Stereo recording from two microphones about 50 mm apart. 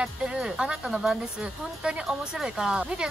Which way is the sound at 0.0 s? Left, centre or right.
Centre.